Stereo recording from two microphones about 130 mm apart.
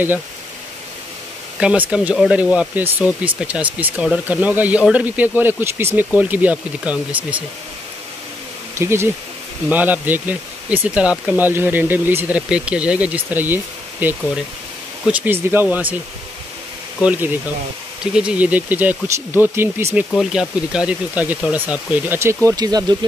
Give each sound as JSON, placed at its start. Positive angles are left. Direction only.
{"t": 1.6, "sound": "speech", "side_deg": -10}
{"t": 8.7, "sound": "speech", "side_deg": -20}
{"t": 17.0, "sound": "speech", "side_deg": -15}
{"t": 20.2, "sound": "speech", "side_deg": -5}